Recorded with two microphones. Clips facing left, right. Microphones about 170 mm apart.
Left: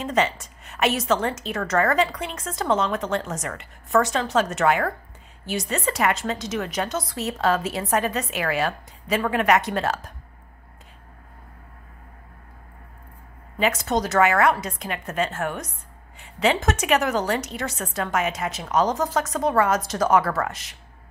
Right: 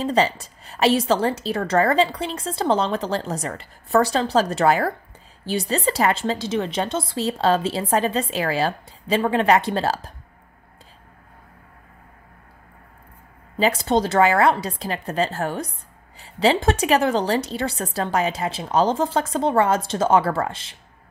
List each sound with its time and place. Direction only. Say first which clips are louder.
0.0 s a woman's voice: right 3 dB; 35° right (ahead or behind)
13.6 s a woman's voice: right 3 dB; 30° right (ahead or behind)